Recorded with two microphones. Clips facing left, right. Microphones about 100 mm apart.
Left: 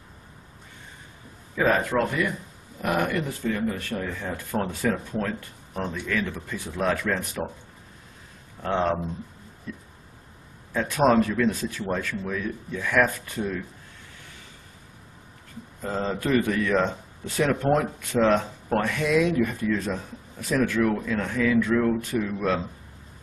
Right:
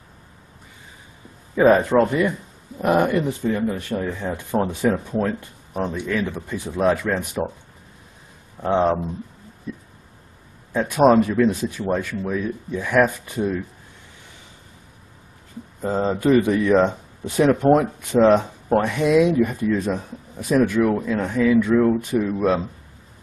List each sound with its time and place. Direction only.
1.5 s speech: 20° right (ahead or behind)
8.6 s speech: 15° right (ahead or behind)
10.7 s speech: 20° right (ahead or behind)
15.8 s speech: 20° right (ahead or behind)